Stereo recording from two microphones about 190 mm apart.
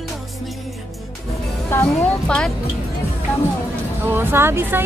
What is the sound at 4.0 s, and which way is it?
Speech, 10° right (ahead or behind).